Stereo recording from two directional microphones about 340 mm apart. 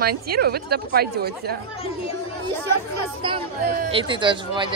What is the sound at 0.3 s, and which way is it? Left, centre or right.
A woman's voice, right.